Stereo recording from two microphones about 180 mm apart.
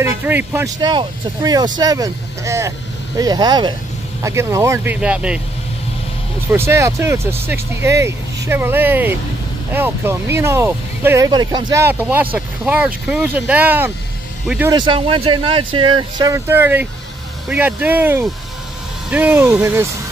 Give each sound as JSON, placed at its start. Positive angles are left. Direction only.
{"t": 0.0, "sound": "speech", "side_deg": -10}
{"t": 0.7, "sound": "speech", "side_deg": -25}
{"t": 6.5, "sound": "speech", "side_deg": -15}
{"t": 11.8, "sound": "speech", "side_deg": -10}
{"t": 14.7, "sound": "speech", "side_deg": -25}